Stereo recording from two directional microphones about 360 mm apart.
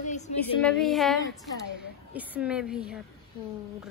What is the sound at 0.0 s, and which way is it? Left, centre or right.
Female singing, centre.